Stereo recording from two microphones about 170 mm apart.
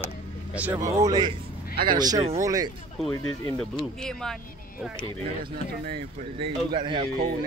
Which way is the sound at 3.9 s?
5° left (ahead or behind).